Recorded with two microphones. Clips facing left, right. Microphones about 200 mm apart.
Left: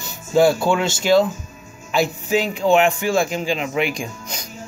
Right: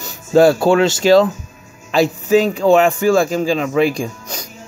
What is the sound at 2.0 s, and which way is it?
A man's voice, 40° right (ahead or behind).